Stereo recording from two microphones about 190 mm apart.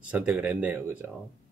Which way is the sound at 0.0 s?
5° right (ahead or behind).